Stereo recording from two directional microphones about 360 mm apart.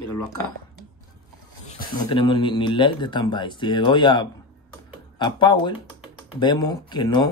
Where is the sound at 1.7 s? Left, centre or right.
Centre.